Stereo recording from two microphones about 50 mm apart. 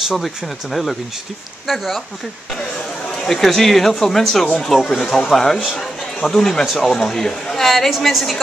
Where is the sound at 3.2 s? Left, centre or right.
Centre.